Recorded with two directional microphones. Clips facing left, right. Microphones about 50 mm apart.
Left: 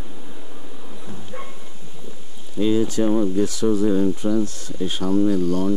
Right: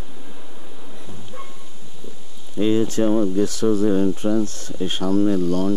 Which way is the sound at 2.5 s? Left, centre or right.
Right.